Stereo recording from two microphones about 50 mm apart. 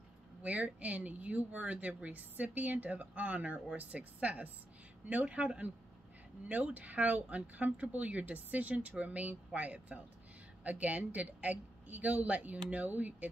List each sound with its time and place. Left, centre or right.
0.4 s speech: right